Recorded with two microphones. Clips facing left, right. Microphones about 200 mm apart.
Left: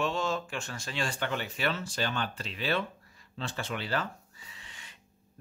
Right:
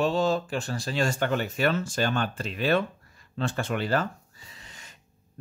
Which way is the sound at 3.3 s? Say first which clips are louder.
Right 7 dB; 50° right (ahead or behind).